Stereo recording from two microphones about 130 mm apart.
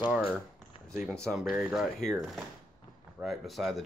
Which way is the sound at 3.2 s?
Centre (ahead or behind).